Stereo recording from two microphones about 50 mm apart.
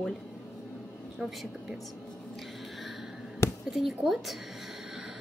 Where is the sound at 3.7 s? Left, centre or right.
Centre.